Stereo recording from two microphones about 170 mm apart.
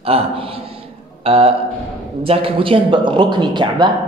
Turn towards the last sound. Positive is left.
turn(degrees=-25)  # may be behind; listen again after turning